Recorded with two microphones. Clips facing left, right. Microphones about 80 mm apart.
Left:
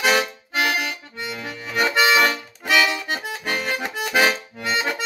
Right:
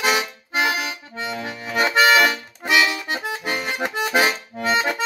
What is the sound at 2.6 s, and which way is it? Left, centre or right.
Accordion, right.